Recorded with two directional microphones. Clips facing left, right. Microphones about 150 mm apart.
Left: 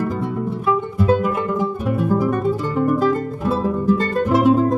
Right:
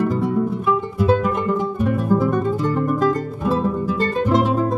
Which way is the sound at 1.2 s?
5° left (ahead or behind).